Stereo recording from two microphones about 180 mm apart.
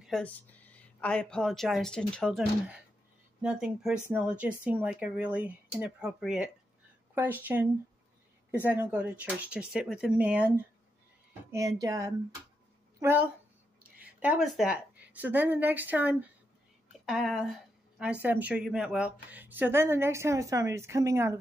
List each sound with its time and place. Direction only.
0.0 s speech: 5° left (ahead or behind)
3.4 s speech: 5° right (ahead or behind)
8.6 s speech: 10° right (ahead or behind)
11.5 s a woman's voice: 20° right (ahead or behind)